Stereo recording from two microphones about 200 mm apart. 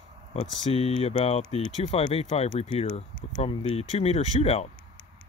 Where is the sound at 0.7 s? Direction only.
30° left (ahead or behind).